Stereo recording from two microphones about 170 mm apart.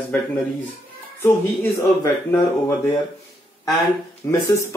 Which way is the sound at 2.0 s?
15° left (ahead or behind).